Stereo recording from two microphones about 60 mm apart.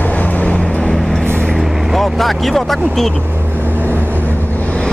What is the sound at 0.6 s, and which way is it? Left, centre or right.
Vehicle, centre.